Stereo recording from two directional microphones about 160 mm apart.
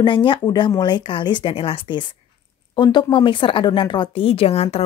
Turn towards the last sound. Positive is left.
turn(degrees=40)  # may be behind; listen again after turning